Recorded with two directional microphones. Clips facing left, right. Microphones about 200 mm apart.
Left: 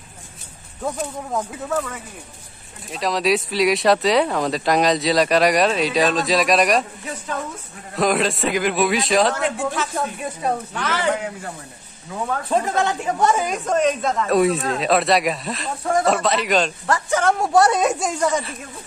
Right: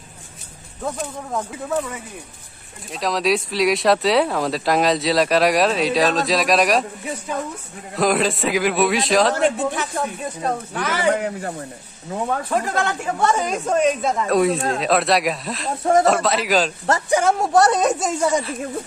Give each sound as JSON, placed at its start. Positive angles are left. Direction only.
{"t": 0.8, "sound": "speech", "side_deg": 5}
{"t": 9.3, "sound": "speech", "side_deg": -30}
{"t": 9.9, "sound": "speech", "side_deg": 5}
{"t": 10.7, "sound": "speech", "side_deg": -10}
{"t": 12.4, "sound": "speech", "side_deg": 20}
{"t": 13.7, "sound": "speech", "side_deg": -5}
{"t": 16.8, "sound": "speech", "side_deg": -25}
{"t": 17.2, "sound": "speech", "side_deg": -5}